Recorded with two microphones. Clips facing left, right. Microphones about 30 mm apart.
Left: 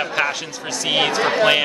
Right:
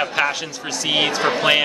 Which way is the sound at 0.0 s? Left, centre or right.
Centre.